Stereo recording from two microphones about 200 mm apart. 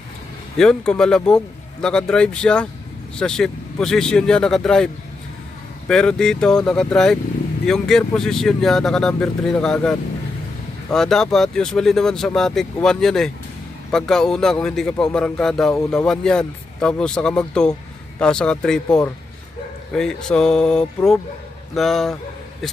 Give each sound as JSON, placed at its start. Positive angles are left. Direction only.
{"t": 0.6, "sound": "speech", "side_deg": 5}